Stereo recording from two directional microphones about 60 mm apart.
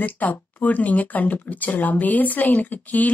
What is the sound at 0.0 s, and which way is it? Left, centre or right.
A woman's voice, left.